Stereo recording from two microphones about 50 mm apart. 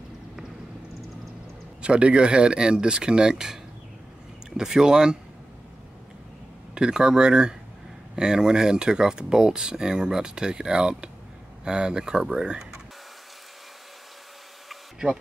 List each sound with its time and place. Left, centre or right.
1.8 s speech: right
6.7 s speech: centre